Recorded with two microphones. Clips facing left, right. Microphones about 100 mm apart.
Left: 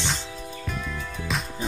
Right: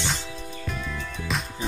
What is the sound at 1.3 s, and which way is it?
Music, centre (ahead or behind).